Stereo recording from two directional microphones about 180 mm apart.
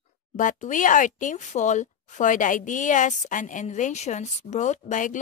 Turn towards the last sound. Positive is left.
turn(degrees=45)  # may be behind; listen again after turning